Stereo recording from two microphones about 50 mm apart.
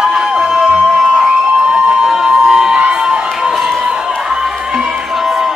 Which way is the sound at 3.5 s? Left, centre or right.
Centre.